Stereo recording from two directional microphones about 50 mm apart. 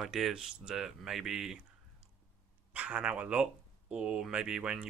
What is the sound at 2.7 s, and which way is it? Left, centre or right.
Speech, right.